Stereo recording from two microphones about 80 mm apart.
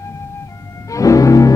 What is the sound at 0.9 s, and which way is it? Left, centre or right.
Music, left.